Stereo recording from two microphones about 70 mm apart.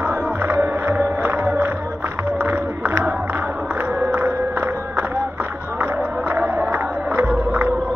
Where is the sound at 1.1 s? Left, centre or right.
Right.